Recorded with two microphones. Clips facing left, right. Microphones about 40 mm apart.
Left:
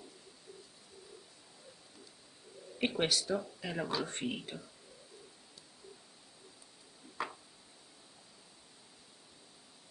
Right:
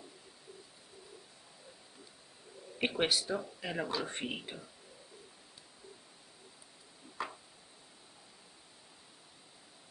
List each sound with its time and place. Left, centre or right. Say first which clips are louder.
2.8 s speech: right 1 dB; centre
7.2 s tick-tock: left 1 dB; centre